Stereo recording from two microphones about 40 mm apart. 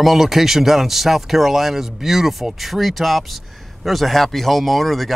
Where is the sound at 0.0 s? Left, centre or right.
Centre.